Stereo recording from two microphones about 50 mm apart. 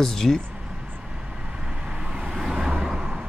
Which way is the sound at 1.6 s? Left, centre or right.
Centre.